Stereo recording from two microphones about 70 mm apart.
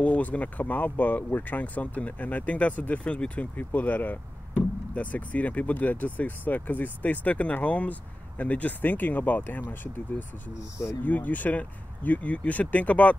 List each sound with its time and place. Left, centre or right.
0.0 s speech: left